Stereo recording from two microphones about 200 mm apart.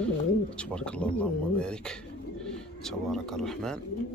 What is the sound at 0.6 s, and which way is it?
Speech, 5° left (ahead or behind).